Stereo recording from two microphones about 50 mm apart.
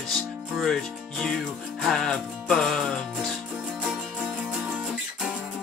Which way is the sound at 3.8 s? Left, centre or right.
Centre.